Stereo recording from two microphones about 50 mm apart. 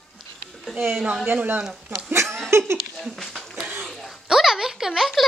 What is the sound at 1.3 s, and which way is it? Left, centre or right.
Speech, right.